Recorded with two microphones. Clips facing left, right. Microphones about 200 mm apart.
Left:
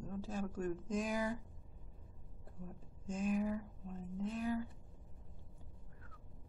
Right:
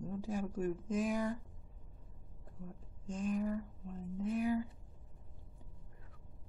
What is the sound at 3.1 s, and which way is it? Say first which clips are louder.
Speech: even; 5° left (ahead or behind).